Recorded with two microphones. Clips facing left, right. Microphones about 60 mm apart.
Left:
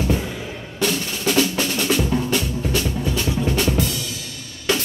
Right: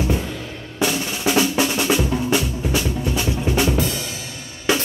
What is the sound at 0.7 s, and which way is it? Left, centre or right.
Drum, centre.